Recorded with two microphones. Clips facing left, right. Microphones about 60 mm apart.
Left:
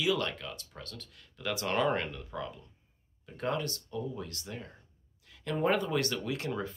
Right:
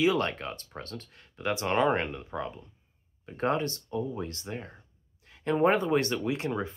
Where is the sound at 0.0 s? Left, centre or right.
Right.